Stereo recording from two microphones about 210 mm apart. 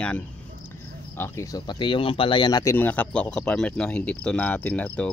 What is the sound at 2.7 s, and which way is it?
Speech, 10° left (ahead or behind).